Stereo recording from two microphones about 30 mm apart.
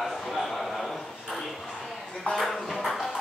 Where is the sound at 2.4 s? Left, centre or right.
Centre.